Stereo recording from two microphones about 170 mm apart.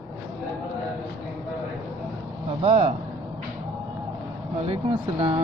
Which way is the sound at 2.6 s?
35° right (ahead or behind).